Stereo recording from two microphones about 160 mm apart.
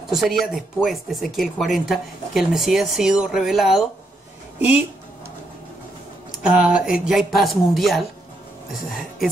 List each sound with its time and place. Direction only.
0.1 s speech: centre (ahead or behind)
6.4 s speech: 5° right (ahead or behind)